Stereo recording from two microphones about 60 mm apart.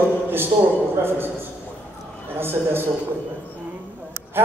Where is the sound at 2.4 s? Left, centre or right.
Right.